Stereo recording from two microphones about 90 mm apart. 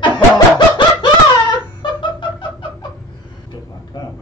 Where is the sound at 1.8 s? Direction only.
60° left (ahead or behind).